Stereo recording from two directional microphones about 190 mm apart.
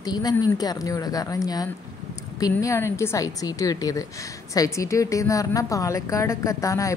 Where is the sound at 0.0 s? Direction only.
20° left (ahead or behind).